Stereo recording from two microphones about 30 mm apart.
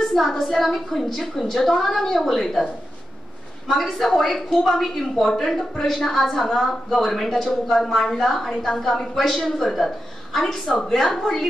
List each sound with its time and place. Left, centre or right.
0.0 s a woman's voice: centre
3.6 s a woman's voice: centre